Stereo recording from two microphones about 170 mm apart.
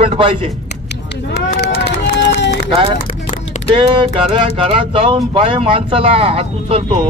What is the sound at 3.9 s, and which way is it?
Speech, 30° right (ahead or behind).